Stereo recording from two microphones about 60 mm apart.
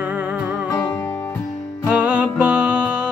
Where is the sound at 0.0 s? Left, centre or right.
Right.